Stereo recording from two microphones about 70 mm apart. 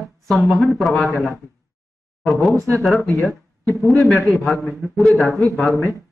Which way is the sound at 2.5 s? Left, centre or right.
Right.